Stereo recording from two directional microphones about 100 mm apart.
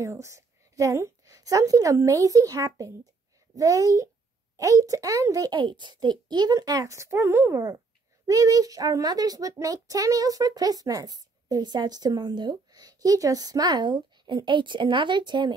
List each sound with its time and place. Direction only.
0.0 s a woman's voice: 30° right (ahead or behind)
5.6 s speech: 50° right (ahead or behind)